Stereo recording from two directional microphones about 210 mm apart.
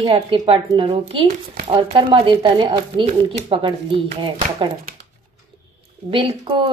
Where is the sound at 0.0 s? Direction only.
25° right (ahead or behind).